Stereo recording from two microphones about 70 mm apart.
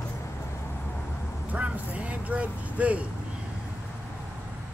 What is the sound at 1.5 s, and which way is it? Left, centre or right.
Vehicle, centre.